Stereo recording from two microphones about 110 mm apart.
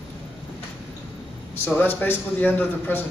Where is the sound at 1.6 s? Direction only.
15° left (ahead or behind).